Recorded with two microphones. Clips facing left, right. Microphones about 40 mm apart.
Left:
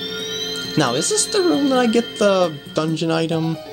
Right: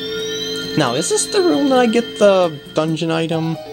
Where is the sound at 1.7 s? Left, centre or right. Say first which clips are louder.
Right 3 dB; right.